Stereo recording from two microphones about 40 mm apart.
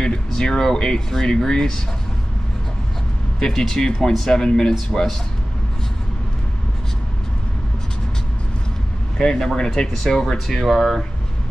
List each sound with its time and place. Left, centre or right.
0.0 s speech: centre
3.3 s speech: centre
9.2 s speech: centre
10.2 s speech: centre